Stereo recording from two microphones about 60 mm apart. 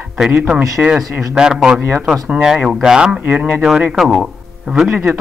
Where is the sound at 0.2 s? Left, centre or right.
Centre.